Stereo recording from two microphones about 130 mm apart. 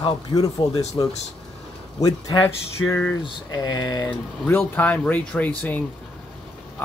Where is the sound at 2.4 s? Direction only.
15° left (ahead or behind).